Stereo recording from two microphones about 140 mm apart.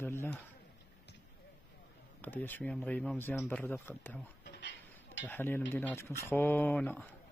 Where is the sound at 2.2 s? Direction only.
15° left (ahead or behind).